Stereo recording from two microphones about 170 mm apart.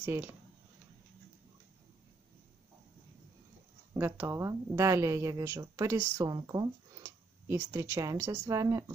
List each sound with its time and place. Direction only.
0.0 s speech: 15° right (ahead or behind)
3.9 s speech: 15° right (ahead or behind)
7.0 s speech: 15° right (ahead or behind)